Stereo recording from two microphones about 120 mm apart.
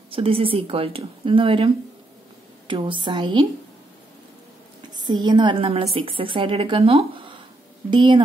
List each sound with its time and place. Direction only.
0.1 s speech: 50° right (ahead or behind)
2.7 s a woman's voice: 40° right (ahead or behind)
4.9 s a woman's voice: 35° right (ahead or behind); by 7.2 s 55° right (ahead or behind)
7.9 s a woman's voice: 40° right (ahead or behind)